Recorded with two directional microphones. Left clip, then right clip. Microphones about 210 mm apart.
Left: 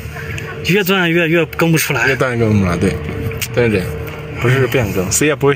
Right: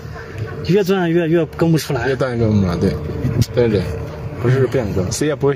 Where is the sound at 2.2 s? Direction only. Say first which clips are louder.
Left 3 dB; 15° left (ahead or behind).